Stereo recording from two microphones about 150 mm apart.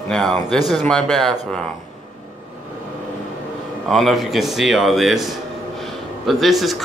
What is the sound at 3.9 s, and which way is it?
Speech, centre (ahead or behind).